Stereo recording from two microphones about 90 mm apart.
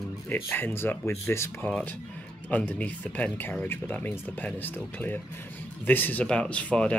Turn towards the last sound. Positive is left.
turn(degrees=15)  # may be behind; listen again after turning